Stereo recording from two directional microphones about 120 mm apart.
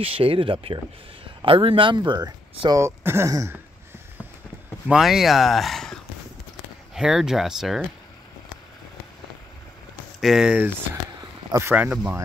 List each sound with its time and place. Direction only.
0.0 s speech: 50° right (ahead or behind)
2.8 s speech: 20° right (ahead or behind)
4.8 s speech: 5° right (ahead or behind)
10.2 s speech: 5° right (ahead or behind)
11.7 s speech: 15° right (ahead or behind)